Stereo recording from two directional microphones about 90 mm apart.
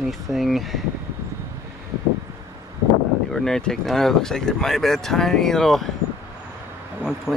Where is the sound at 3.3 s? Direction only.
5° left (ahead or behind).